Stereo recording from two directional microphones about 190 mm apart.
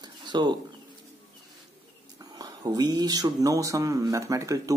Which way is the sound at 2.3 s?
20° right (ahead or behind).